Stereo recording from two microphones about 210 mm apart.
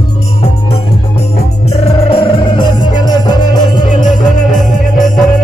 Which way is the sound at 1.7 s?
25° left (ahead or behind).